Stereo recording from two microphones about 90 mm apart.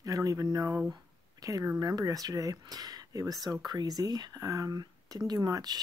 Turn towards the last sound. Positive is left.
turn(degrees=-45)  # may be behind; listen again after turning